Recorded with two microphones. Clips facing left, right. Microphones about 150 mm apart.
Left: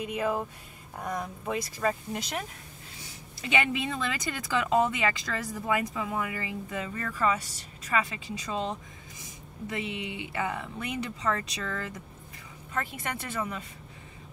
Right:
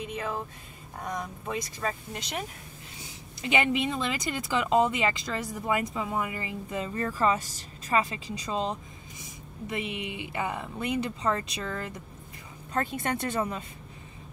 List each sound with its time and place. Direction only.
0.0 s speech: 10° left (ahead or behind)
3.3 s speech: 25° right (ahead or behind)
9.9 s speech: 25° left (ahead or behind)
10.3 s speech: 20° right (ahead or behind)
12.7 s speech: 35° right (ahead or behind)